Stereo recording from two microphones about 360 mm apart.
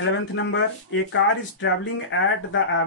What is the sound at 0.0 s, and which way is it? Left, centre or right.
Speech, left.